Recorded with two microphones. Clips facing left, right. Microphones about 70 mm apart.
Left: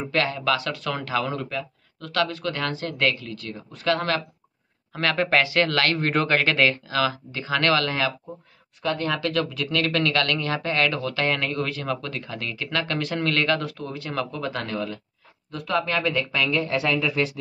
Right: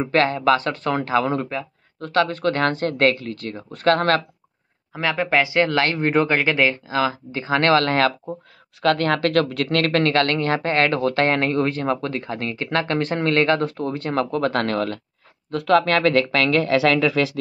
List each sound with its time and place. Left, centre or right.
0.0 s speech: right
4.9 s speech: centre; by 8.1 s right
8.8 s speech: right